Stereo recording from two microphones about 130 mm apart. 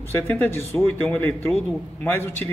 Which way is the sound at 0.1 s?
15° left (ahead or behind).